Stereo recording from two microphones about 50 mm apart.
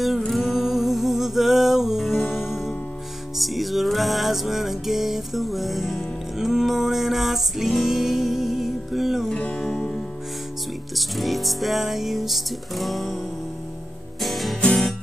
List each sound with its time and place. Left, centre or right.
0.0 s music: centre
9.3 s music: left
11.0 s music: centre
14.2 s music: centre